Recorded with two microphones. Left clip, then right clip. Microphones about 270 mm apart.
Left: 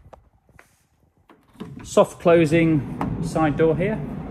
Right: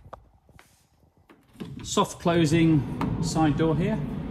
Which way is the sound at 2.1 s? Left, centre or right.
Right.